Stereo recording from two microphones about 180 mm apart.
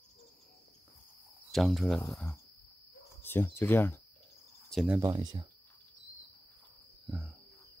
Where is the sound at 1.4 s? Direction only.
Centre (ahead or behind).